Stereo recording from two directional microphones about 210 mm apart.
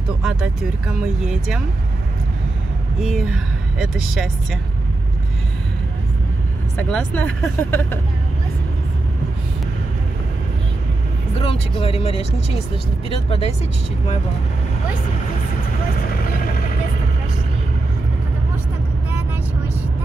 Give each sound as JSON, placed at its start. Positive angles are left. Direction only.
{"t": 0.2, "sound": "speech", "side_deg": 0}
{"t": 3.0, "sound": "speech", "side_deg": 0}
{"t": 6.8, "sound": "speech", "side_deg": 5}
{"t": 11.3, "sound": "speech", "side_deg": 25}
{"t": 16.0, "sound": "vehicle", "side_deg": 45}